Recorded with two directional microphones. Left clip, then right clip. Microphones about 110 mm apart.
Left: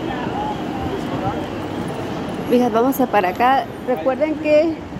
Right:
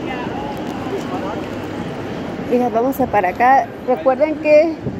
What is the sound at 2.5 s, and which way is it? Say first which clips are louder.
Speech: even; 40° left (ahead or behind).